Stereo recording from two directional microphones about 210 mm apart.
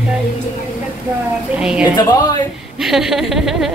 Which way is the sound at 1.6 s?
5° right (ahead or behind).